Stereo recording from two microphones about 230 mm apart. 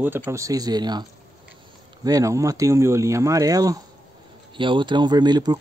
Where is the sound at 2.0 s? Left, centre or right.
Centre.